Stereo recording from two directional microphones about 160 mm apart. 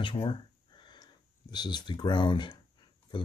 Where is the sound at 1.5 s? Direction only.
25° left (ahead or behind).